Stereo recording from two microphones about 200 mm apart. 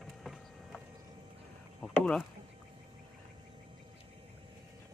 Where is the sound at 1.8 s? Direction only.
5° left (ahead or behind).